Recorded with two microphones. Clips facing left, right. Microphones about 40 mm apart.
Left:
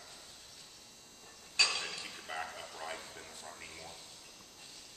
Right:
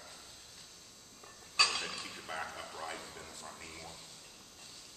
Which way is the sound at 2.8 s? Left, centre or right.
Centre.